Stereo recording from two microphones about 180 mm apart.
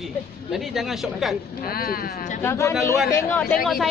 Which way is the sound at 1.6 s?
55° left (ahead or behind).